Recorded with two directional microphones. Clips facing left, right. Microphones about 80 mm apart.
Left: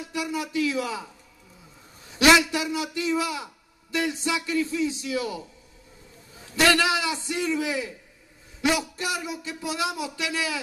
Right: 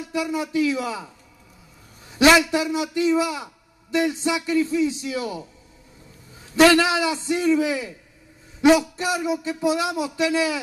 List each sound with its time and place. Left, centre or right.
0.0 s speech: right
2.0 s speech: right
6.4 s speech: right